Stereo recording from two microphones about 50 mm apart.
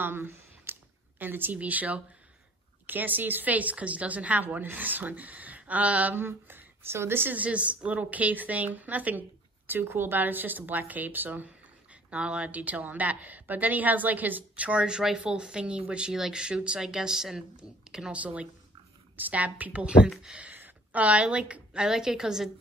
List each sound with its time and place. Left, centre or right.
0.0 s a sound: right
1.2 s speech: right
6.1 s a woman's voice: right
7.3 s speech: right
9.7 s speech: right
16.1 s speech: centre
18.1 s speech: right
20.5 s a woman's voice: right; by 22.5 s centre